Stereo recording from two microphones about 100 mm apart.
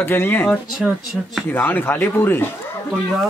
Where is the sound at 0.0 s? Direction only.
20° left (ahead or behind).